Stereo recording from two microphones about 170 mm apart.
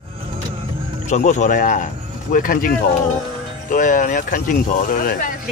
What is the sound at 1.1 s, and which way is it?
Speech, 45° left (ahead or behind).